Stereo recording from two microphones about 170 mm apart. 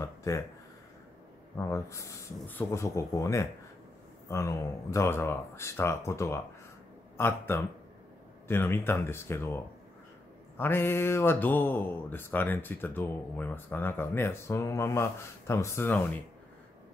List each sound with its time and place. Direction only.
0.0 s a sound: 20° left (ahead or behind)
1.6 s speech: 15° left (ahead or behind)
10.6 s speech: 15° left (ahead or behind)